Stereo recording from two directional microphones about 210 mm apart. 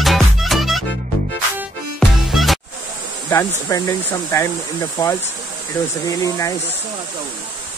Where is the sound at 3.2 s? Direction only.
10° left (ahead or behind).